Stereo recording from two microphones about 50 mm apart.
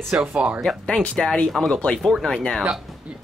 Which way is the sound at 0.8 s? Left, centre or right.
Centre.